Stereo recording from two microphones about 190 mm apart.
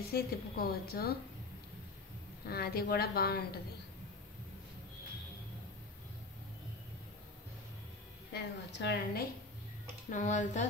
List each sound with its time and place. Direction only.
0.1 s a woman's voice: 55° left (ahead or behind)
2.4 s a woman's voice: 55° left (ahead or behind)
8.3 s a woman's voice: 60° left (ahead or behind)
10.0 s speech: 40° left (ahead or behind)